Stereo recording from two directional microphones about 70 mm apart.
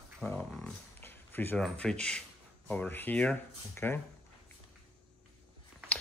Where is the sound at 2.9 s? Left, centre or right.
Left.